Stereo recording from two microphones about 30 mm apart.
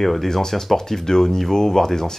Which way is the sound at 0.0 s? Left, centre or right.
Centre.